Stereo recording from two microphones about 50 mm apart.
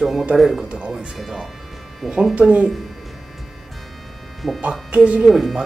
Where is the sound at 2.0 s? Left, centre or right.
Centre.